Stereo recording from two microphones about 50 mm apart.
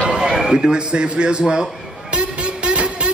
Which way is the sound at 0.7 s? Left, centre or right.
Centre.